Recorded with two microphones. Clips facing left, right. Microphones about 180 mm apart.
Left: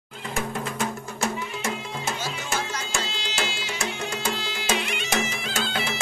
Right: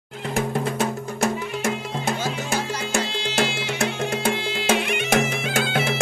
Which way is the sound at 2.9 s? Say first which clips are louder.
Right 6 dB; 55° right (ahead or behind).